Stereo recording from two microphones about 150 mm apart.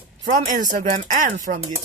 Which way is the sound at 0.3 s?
60° right (ahead or behind).